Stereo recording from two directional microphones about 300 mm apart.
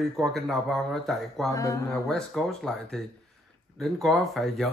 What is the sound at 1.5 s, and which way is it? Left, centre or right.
A woman's voice, centre.